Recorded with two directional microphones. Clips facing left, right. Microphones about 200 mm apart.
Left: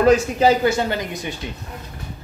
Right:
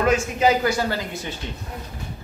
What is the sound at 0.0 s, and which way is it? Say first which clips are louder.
Speech: left 4 dB; 35° left (ahead or behind).